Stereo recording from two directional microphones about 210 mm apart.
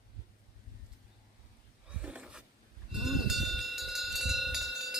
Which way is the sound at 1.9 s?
5° right (ahead or behind).